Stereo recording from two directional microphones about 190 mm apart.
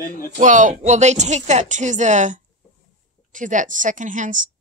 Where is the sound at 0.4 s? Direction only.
40° right (ahead or behind).